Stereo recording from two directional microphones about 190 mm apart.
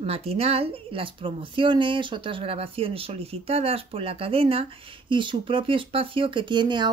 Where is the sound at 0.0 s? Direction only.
30° right (ahead or behind).